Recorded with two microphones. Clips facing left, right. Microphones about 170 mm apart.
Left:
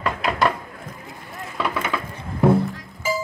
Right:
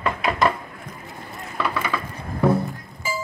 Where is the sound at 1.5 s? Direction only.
20° left (ahead or behind).